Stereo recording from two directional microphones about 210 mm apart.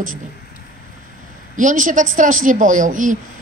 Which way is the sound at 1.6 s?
35° right (ahead or behind).